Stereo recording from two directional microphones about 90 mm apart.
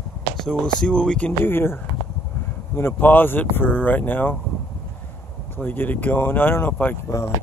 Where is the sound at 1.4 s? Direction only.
25° left (ahead or behind).